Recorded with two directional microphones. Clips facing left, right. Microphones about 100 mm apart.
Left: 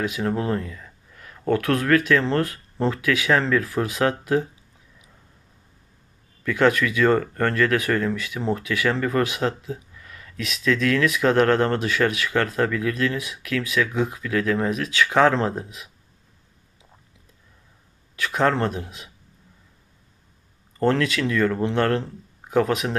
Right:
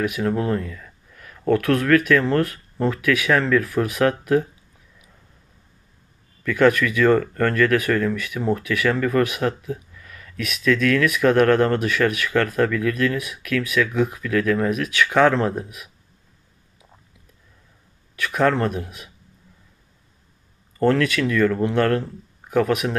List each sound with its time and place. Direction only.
0.0 s speech: 25° left (ahead or behind)
6.4 s speech: 20° left (ahead or behind)
18.1 s speech: 25° left (ahead or behind)
20.8 s speech: 25° left (ahead or behind)